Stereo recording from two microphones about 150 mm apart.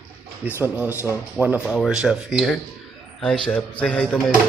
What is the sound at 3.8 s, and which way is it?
Speech, 10° left (ahead or behind).